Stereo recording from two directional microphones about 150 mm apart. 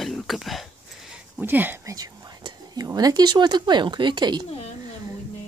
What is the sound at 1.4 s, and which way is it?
Speech, 10° right (ahead or behind).